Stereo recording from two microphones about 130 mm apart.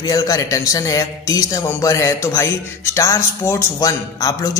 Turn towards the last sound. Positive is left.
turn(degrees=30)  # may be behind; listen again after turning